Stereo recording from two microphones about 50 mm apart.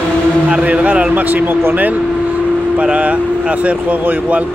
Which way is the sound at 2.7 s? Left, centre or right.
Right.